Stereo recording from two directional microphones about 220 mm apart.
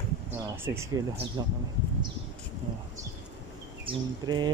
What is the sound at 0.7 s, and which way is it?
Speech, 15° right (ahead or behind).